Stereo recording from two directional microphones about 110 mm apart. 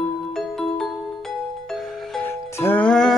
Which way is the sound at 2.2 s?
20° left (ahead or behind).